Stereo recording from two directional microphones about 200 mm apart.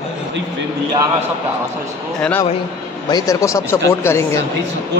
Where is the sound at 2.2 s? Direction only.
10° left (ahead or behind).